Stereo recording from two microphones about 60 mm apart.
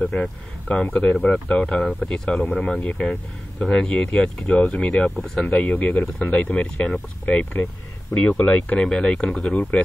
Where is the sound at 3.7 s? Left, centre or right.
Left; by 5.6 s centre.